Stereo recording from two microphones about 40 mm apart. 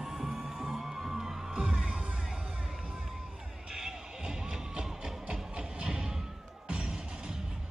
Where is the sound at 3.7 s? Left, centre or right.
Centre.